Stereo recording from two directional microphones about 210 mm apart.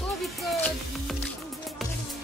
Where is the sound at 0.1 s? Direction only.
Centre (ahead or behind).